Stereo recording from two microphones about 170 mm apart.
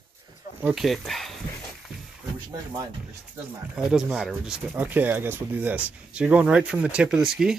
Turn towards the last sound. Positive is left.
turn(degrees=-5)  # may be behind; listen again after turning